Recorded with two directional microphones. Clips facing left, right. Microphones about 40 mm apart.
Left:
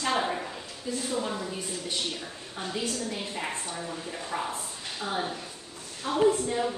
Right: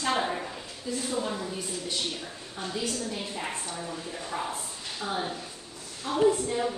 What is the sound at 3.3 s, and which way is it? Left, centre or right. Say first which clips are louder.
A woman's voice: left 1 dB; centre.